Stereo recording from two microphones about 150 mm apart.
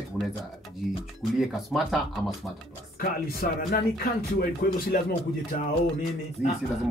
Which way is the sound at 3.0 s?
90° left.